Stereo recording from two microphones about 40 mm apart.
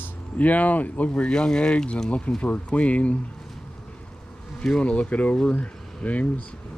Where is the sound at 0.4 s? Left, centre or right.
Left.